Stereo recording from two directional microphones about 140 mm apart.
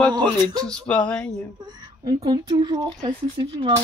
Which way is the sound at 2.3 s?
30° right (ahead or behind).